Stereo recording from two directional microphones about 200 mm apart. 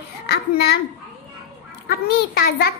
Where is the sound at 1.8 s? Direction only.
50° left (ahead or behind).